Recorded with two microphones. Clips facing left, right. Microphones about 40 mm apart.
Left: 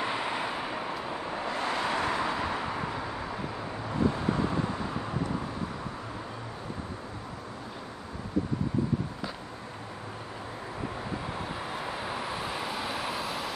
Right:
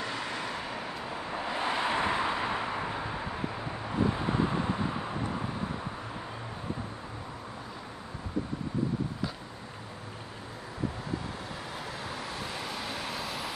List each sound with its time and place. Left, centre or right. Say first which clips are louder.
0.0 s vehicle: left 4 dB; left
1.4 s vehicle: right 1 dB; centre
11.7 s vehicle: left 3 dB; centre